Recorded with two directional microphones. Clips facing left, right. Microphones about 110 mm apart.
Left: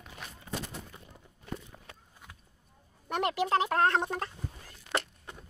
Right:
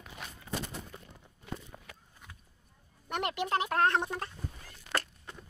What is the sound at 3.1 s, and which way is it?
Speech, 30° left (ahead or behind).